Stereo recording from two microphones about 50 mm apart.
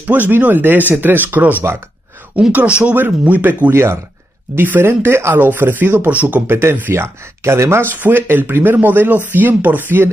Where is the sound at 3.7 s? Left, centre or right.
Right.